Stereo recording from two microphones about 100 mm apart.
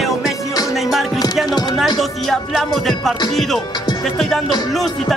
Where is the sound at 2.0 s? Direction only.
Centre (ahead or behind).